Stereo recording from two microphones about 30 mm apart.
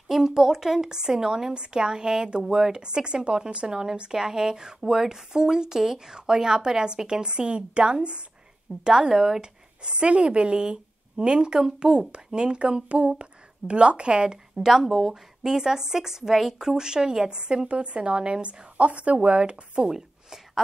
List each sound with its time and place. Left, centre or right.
0.3 s a woman's voice: centre; by 8.2 s right
8.8 s a woman's voice: right
9.1 s a woman's voice: centre
9.4 s a woman's voice: right
14.7 s a woman's voice: centre
15.5 s a woman's voice: centre
17.6 s a woman's voice: right
18.4 s speech: right